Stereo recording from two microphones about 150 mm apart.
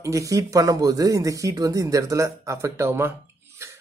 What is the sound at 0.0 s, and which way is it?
Speech, 20° right (ahead or behind).